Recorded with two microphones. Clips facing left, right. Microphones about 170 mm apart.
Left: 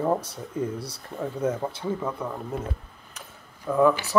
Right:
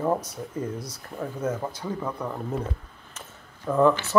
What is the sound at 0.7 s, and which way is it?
Speech, 30° left (ahead or behind).